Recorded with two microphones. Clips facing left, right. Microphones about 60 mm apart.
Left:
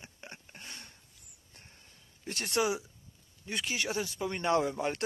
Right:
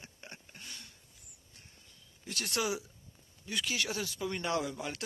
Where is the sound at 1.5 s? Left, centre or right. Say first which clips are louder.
Left 3 dB; left.